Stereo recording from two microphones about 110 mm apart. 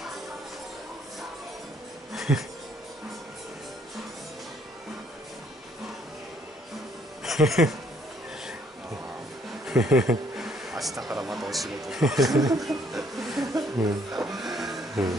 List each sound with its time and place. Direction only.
2.1 s a sound: 5° right (ahead or behind)
7.2 s speech: centre (ahead or behind)
9.7 s speech: 5° right (ahead or behind)
12.3 s speech: 35° right (ahead or behind)
12.5 s chuckle: centre (ahead or behind)
14.1 s speech: 5° right (ahead or behind)